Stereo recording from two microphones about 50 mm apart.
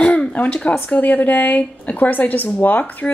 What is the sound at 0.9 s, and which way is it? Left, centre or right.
Speech, left.